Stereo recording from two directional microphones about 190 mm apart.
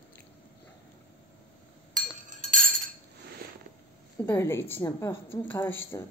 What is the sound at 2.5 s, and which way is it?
Cutlery, 45° right (ahead or behind).